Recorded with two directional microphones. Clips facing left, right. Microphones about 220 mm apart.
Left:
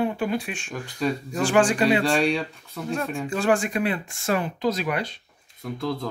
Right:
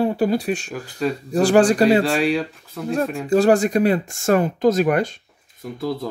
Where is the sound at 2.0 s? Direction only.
Centre (ahead or behind).